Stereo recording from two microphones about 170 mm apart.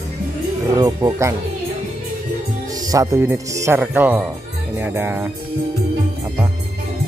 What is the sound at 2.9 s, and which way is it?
Speech, 15° right (ahead or behind).